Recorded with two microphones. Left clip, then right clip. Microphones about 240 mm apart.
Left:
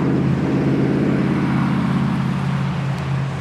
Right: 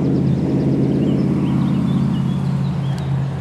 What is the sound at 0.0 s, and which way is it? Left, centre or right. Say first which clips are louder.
Vehicle: even; centre.